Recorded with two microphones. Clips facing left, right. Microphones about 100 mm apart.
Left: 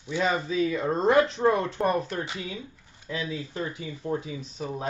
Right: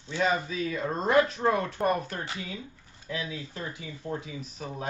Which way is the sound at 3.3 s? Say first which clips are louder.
Left 5 dB; 25° left (ahead or behind).